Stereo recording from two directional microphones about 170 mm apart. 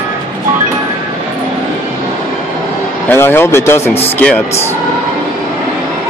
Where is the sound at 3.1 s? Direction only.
15° left (ahead or behind).